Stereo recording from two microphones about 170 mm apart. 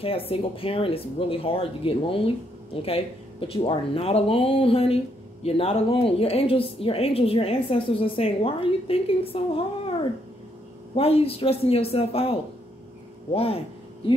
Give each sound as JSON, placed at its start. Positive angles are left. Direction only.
{"t": 0.0, "sound": "speech", "side_deg": 35}
{"t": 11.0, "sound": "speech", "side_deg": 35}